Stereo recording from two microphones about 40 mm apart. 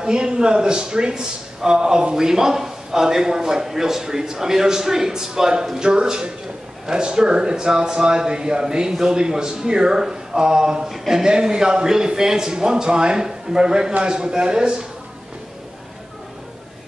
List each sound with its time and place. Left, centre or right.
0.0 s a man's voice: right